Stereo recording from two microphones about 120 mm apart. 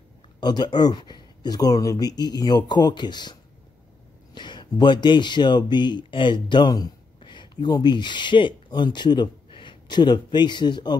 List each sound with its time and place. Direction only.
0.4 s speech: 35° left (ahead or behind)